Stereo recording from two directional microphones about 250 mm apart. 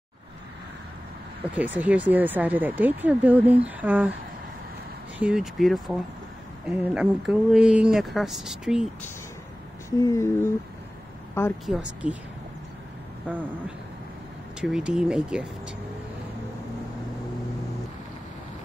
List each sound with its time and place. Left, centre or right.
1.5 s speech: centre
5.2 s speech: centre
9.8 s a sound: centre
11.8 s speech: centre
14.6 s speech: centre